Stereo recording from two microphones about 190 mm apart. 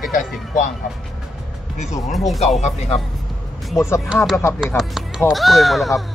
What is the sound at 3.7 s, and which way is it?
Speech, 15° left (ahead or behind).